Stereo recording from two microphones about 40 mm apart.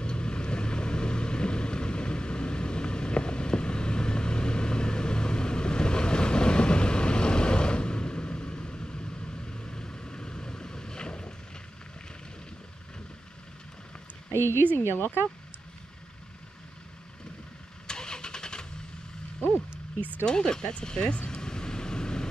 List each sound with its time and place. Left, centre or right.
0.0 s vehicle: left
9.5 s boat: left
14.3 s speech: left
15.0 s speech: left
17.8 s vehicle: centre
20.2 s speech: centre
21.3 s vehicle: centre